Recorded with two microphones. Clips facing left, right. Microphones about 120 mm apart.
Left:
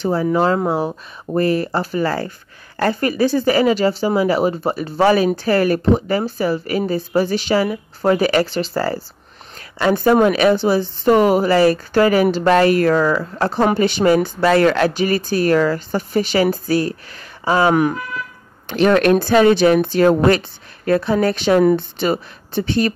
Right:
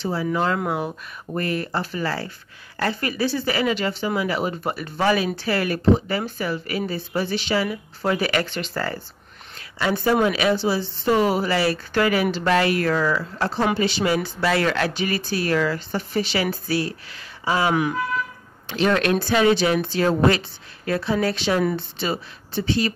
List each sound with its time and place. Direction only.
0.0 s speech: 45° left (ahead or behind)
9.8 s speech: 45° left (ahead or behind)